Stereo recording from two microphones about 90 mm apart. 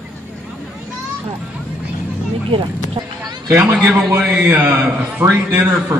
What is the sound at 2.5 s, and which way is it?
Speech, 60° right (ahead or behind).